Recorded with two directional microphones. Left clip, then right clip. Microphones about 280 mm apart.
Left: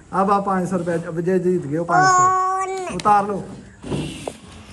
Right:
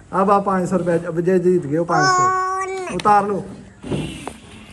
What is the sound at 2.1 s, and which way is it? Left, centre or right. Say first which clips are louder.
Speech: left 1 dB; centre.